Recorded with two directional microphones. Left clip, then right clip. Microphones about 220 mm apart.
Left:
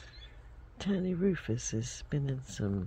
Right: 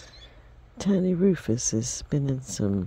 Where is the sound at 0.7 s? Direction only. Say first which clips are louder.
Right 9 dB; 60° right (ahead or behind).